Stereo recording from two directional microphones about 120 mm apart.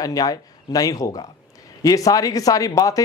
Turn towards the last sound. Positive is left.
turn(degrees=30)  # may be behind; listen again after turning